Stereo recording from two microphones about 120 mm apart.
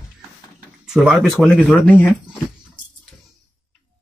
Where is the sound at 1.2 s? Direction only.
10° left (ahead or behind).